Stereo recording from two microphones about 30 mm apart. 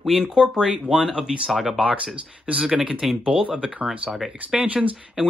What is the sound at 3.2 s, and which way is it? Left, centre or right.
Speech, right.